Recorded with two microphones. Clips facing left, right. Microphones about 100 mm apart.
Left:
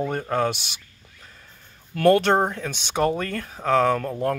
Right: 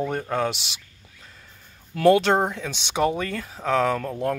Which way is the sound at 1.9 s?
15° right (ahead or behind).